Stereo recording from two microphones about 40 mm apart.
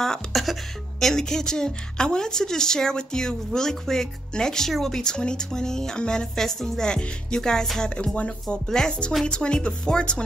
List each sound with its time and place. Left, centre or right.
0.3 s music: centre
1.0 s speech: centre
9.2 s speech: left